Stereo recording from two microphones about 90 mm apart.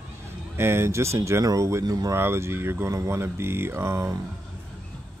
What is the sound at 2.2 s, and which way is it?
Speech, 30° right (ahead or behind).